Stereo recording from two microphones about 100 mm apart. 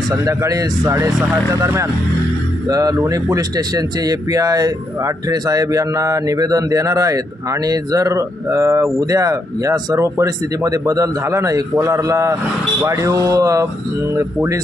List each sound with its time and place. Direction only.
0.1 s speech: 30° right (ahead or behind)
2.7 s speech: 35° right (ahead or behind)